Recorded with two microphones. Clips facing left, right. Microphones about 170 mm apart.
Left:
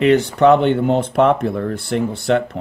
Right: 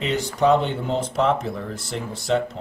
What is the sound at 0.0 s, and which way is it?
Speech, 60° left (ahead or behind).